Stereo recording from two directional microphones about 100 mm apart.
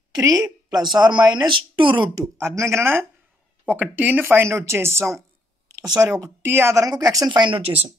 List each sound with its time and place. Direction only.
0.1 s a woman's voice: 40° right (ahead or behind)
2.1 s speech: 30° right (ahead or behind)
7.2 s speech: 50° right (ahead or behind)